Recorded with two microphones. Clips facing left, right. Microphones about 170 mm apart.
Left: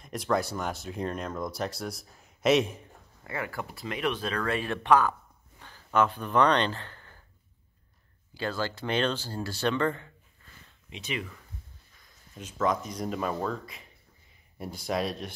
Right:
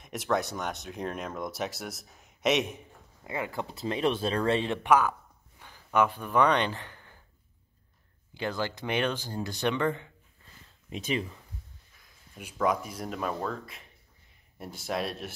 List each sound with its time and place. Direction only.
0.0 s speech: centre (ahead or behind)
3.3 s speech: 20° right (ahead or behind)
4.8 s speech: 10° right (ahead or behind)
8.4 s speech: 15° right (ahead or behind)
12.4 s speech: 10° right (ahead or behind)